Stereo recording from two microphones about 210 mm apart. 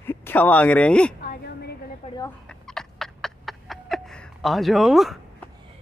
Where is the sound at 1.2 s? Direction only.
50° left (ahead or behind).